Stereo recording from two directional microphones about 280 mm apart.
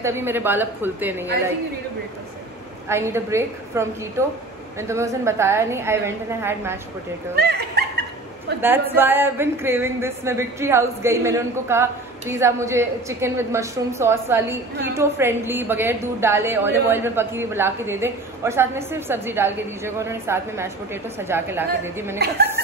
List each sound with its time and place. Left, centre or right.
0.0 s a woman's voice: centre
2.9 s a woman's voice: centre
7.3 s a sound: right
8.5 s a woman's voice: centre